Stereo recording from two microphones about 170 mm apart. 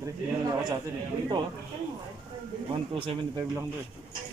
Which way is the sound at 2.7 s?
30° right (ahead or behind).